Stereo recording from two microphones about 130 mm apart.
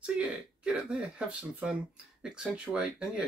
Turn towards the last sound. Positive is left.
turn(degrees=-5)  # may be behind; listen again after turning